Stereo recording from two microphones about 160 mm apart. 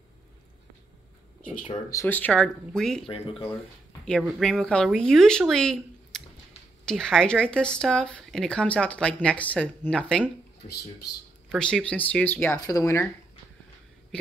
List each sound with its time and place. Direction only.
1.7 s speech: 20° left (ahead or behind); by 3.1 s 5° left (ahead or behind)
3.1 s speech: 35° left (ahead or behind)
4.0 s speech: 5° left (ahead or behind)
11.5 s speech: 5° left (ahead or behind)